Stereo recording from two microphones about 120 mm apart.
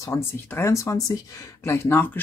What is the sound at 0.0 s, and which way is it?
Speech, 20° left (ahead or behind).